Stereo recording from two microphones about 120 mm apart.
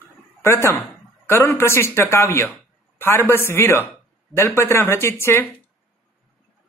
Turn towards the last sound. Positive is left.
turn(degrees=20)  # may be behind; listen again after turning